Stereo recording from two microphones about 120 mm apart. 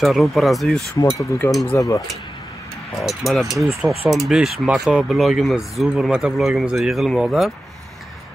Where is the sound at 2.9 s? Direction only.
Centre (ahead or behind).